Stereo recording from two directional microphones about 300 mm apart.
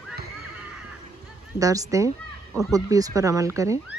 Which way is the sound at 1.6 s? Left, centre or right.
Centre.